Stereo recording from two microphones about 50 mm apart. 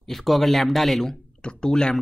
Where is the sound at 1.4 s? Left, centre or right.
Centre.